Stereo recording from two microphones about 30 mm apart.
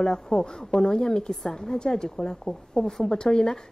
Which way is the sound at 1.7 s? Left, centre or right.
Left.